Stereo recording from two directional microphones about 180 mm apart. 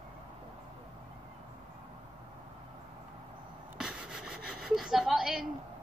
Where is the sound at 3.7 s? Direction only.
5° right (ahead or behind).